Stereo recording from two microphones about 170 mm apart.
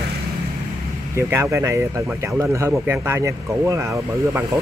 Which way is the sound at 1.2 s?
15° right (ahead or behind).